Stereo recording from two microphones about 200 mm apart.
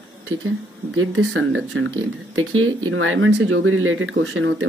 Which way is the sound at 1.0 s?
80° right.